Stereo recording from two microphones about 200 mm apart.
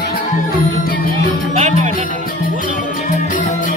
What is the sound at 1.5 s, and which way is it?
Music, 35° right (ahead or behind).